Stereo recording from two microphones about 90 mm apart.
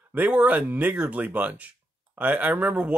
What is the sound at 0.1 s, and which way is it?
Speech, 15° right (ahead or behind).